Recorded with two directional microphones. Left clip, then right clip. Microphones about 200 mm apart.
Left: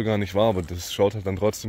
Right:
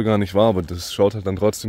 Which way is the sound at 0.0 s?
45° right (ahead or behind).